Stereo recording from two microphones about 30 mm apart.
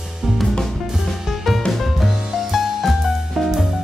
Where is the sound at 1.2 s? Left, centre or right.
Centre.